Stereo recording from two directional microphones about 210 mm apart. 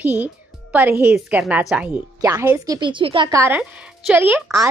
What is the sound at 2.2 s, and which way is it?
Speech, 15° right (ahead or behind).